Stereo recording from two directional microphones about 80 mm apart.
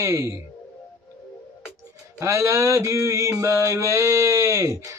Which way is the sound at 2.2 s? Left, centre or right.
Right.